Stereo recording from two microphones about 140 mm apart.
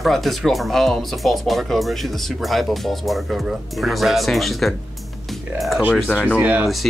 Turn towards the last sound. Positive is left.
turn(degrees=-10)  # may be behind; listen again after turning